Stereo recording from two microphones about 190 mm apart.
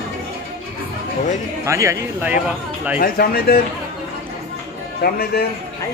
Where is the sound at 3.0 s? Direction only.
55° left (ahead or behind).